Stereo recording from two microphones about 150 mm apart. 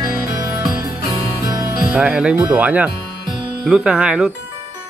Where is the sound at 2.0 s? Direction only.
5° right (ahead or behind).